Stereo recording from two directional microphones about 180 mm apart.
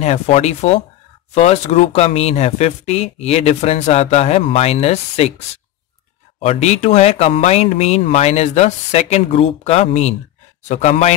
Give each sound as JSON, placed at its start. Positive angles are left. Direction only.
{"t": 0.0, "sound": "speech", "side_deg": 35}
{"t": 6.4, "sound": "speech", "side_deg": 40}